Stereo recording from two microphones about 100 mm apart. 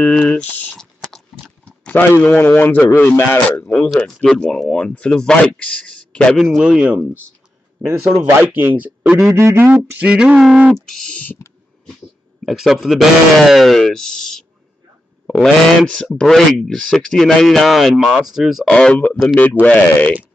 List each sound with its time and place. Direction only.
0.2 s a sound: 15° left (ahead or behind)
2.1 s speech: 20° left (ahead or behind)
4.0 s speech: 5° left (ahead or behind)
6.3 s speech: 5° right (ahead or behind)
8.2 s speech: 20° right (ahead or behind)
9.3 s speech: 30° right (ahead or behind); by 10.7 s 10° right (ahead or behind)
10.7 s speech: 5° left (ahead or behind)
12.4 s speech: centre (ahead or behind)
18.7 s speech: 10° left (ahead or behind)